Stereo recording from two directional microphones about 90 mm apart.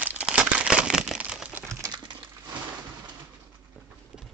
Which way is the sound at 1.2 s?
15° right (ahead or behind).